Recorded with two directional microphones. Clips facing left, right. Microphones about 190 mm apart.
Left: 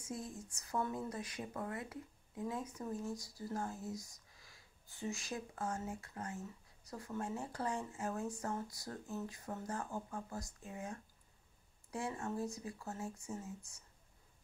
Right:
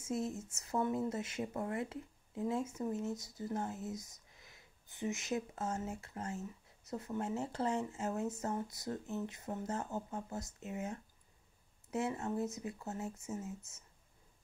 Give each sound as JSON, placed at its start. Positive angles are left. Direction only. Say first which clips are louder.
{"t": 0.0, "sound": "speech", "louder": "right 7 dB", "side_deg": -25}